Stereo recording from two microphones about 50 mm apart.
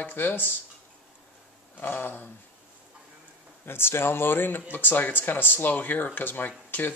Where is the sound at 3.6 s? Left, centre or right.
Left.